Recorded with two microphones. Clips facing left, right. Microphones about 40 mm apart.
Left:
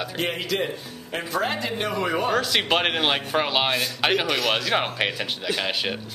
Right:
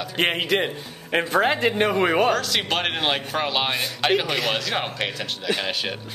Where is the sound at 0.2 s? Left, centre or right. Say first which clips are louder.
Right 5 dB; right.